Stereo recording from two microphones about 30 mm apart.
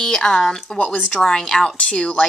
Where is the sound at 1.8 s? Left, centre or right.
Left.